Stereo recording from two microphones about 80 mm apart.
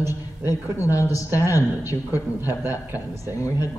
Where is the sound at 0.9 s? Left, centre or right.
Left.